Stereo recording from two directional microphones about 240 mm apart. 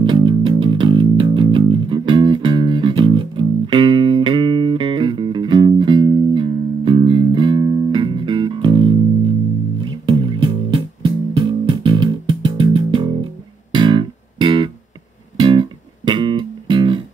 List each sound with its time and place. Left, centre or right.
0.0 s music: centre
10.0 s music: right